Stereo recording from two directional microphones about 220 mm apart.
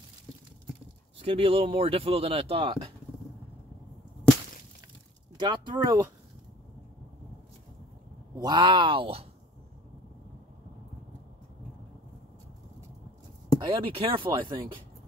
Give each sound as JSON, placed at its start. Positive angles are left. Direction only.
{"t": 1.2, "sound": "speech", "side_deg": -25}
{"t": 5.4, "sound": "speech", "side_deg": -20}
{"t": 8.4, "sound": "speech", "side_deg": -20}
{"t": 13.6, "sound": "speech", "side_deg": -20}